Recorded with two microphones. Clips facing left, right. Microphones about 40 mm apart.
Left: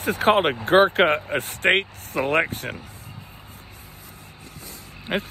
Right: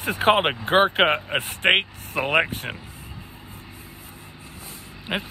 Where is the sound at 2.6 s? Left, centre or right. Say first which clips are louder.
Left 1 dB; centre.